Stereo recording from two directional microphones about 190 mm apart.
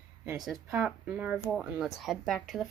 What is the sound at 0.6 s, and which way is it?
Speech, 10° right (ahead or behind).